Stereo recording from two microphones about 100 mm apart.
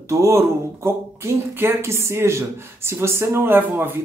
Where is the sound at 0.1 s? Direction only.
30° right (ahead or behind).